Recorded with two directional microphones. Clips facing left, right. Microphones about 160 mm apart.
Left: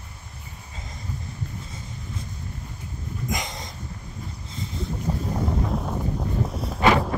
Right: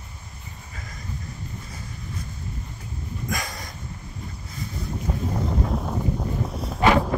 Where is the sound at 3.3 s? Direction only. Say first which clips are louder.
Even; 20° left (ahead or behind).